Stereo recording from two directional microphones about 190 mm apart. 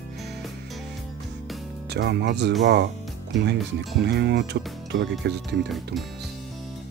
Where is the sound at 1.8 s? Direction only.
65° right (ahead or behind).